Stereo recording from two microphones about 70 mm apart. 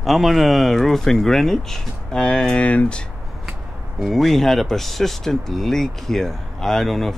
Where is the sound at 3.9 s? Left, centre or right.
Centre.